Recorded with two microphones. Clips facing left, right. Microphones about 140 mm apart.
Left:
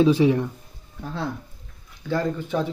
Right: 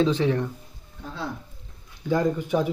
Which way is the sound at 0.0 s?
10° left (ahead or behind).